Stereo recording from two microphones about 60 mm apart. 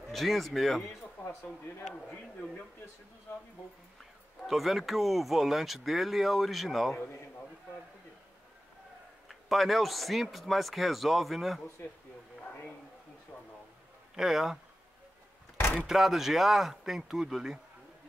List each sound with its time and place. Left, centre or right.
0.1 s speech: centre
3.3 s speech: left
4.0 s speech: centre
9.3 s a man's voice: centre
14.1 s speech: centre
15.9 s speech: centre